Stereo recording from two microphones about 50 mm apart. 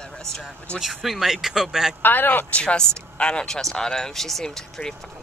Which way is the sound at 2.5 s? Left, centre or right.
Left.